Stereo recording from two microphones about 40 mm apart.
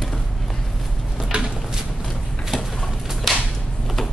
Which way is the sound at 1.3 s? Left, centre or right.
Right.